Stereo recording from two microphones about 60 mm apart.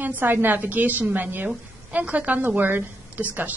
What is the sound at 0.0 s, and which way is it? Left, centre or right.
A woman's voice, right.